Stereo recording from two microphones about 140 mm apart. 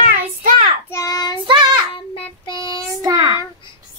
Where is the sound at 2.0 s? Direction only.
35° left (ahead or behind).